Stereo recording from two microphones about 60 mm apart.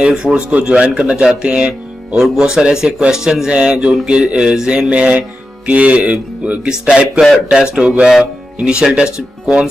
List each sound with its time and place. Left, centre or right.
0.0 s speech: centre